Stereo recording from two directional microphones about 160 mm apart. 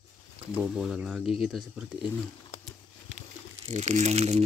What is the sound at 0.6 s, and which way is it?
Speech, 5° right (ahead or behind).